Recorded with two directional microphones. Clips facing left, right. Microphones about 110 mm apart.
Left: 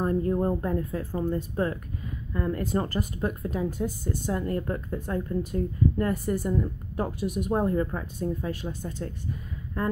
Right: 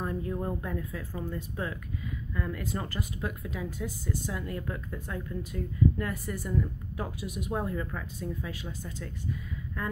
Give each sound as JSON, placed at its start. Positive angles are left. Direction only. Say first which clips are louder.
{"t": 0.0, "sound": "speech", "louder": "left 8 dB", "side_deg": 40}
{"t": 8.2, "sound": "speech", "louder": "left 8 dB", "side_deg": 45}